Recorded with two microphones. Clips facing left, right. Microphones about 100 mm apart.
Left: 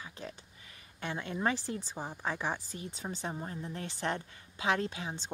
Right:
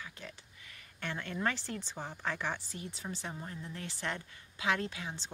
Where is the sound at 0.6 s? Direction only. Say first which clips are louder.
Left 2 dB; 25° left (ahead or behind).